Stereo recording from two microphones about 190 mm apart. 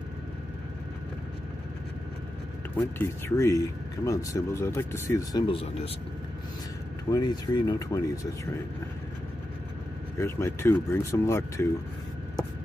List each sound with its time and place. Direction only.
3.0 s speech: 15° left (ahead or behind)
5.5 s speech: 30° left (ahead or behind)
7.1 s speech: 20° left (ahead or behind)
10.1 s speech: 15° left (ahead or behind)